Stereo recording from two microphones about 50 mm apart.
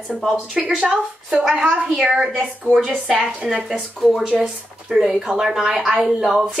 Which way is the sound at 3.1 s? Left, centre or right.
Right.